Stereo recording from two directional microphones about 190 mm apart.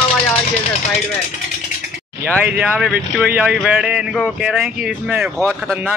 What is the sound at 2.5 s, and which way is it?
Speech, 5° right (ahead or behind).